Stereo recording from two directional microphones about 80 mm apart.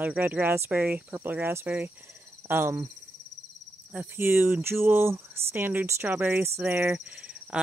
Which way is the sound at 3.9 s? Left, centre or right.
Centre.